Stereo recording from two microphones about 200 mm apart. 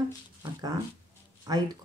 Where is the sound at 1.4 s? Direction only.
20° right (ahead or behind).